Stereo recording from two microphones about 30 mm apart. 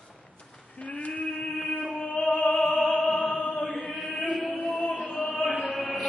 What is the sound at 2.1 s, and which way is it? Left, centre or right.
Opera, left.